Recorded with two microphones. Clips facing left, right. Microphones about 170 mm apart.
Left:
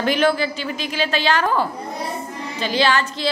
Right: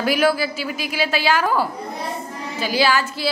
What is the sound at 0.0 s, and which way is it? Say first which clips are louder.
A woman's voice: even; 5° right (ahead or behind).